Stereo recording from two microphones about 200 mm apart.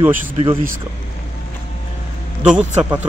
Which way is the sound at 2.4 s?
5° right (ahead or behind).